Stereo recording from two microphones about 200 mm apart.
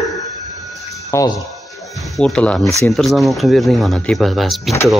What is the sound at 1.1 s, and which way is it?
Speech, 15° left (ahead or behind).